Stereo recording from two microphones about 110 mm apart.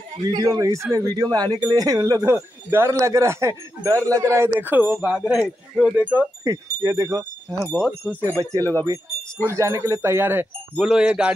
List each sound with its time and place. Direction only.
0.3 s speech: 35° right (ahead or behind); by 5.9 s centre (ahead or behind)
5.9 s speech: 15° right (ahead or behind)
6.4 s speech: 35° right (ahead or behind)
10.8 s speech: 5° right (ahead or behind)